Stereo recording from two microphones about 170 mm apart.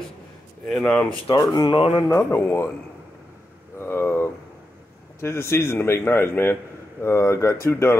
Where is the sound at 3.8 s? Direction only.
15° left (ahead or behind).